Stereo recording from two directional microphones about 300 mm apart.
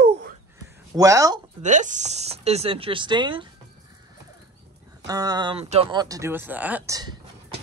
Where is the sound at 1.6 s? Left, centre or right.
Right.